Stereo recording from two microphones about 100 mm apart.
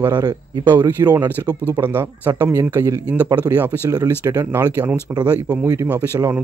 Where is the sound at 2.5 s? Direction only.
30° right (ahead or behind).